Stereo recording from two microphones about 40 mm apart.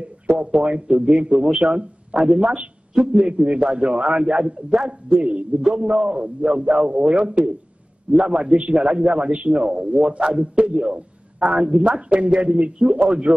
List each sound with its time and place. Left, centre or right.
0.4 s a man's voice: right